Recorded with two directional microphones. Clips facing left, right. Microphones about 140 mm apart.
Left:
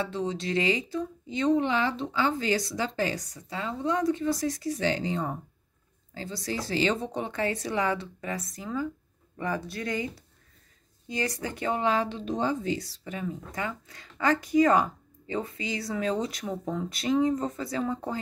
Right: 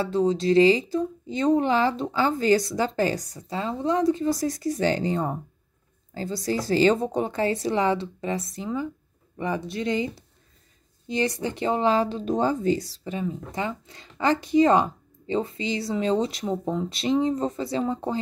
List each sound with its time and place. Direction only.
0.0 s speech: 35° right (ahead or behind)